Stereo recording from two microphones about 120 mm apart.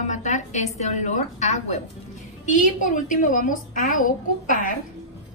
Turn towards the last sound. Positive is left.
turn(degrees=90)